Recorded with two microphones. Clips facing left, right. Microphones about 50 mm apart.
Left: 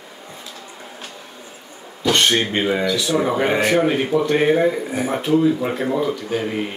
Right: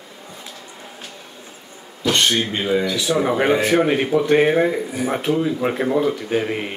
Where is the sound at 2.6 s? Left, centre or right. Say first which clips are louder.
Even; centre.